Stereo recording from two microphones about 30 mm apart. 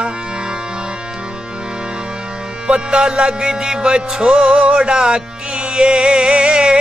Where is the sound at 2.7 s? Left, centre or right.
Right.